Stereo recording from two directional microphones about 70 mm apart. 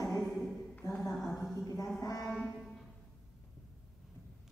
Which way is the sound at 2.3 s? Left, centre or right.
Centre.